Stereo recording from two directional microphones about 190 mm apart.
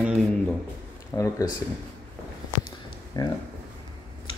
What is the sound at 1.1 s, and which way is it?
Speech, 15° left (ahead or behind).